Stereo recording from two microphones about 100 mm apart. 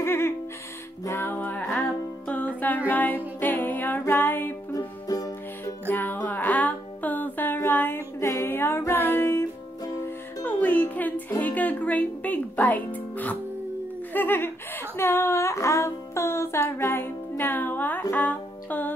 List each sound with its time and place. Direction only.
0.0 s music: 25° left (ahead or behind)
1.0 s a sound: 25° left (ahead or behind)
2.2 s music: 15° left (ahead or behind)
4.7 s music: 40° left (ahead or behind)
5.9 s music: 20° left (ahead or behind)
14.1 s a sound: 20° left (ahead or behind)
18.1 s music: 15° left (ahead or behind)